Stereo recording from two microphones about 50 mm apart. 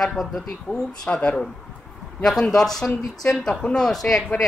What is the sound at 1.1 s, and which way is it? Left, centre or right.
Speech, left.